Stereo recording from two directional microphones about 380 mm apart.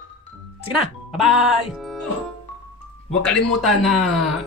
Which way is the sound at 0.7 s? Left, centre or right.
Centre.